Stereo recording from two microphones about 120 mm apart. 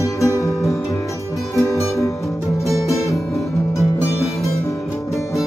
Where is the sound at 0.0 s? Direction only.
25° left (ahead or behind).